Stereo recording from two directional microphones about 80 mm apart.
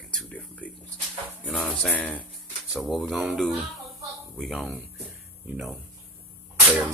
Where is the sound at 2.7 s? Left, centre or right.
Centre.